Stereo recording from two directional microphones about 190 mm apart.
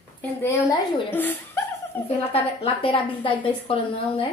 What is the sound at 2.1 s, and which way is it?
A woman's voice, 30° left (ahead or behind).